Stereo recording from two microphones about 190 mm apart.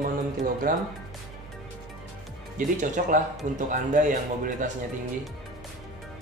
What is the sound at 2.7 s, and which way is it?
A man's voice, 45° right (ahead or behind).